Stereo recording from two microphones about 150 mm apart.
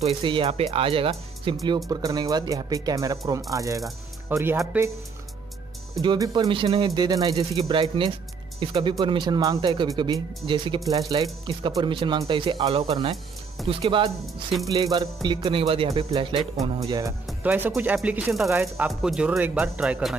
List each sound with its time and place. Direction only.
0.0 s speech: 35° right (ahead or behind)
1.9 s speech: 25° right (ahead or behind)
5.9 s speech: 25° right (ahead or behind)
6.9 s speech: 25° right (ahead or behind)
15.2 s speech: 35° right (ahead or behind)
16.8 s speech: 25° right (ahead or behind)
17.4 s speech: 10° right (ahead or behind)
18.5 s speech: 15° right (ahead or behind)
18.9 s speech: 5° right (ahead or behind)